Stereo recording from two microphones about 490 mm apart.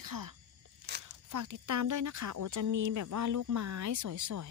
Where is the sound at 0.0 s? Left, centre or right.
Right.